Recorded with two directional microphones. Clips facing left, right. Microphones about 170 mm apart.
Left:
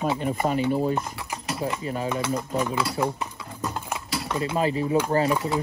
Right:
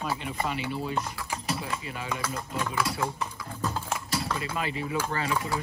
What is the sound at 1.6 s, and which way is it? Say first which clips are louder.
Speech: left 7 dB; 35° left (ahead or behind).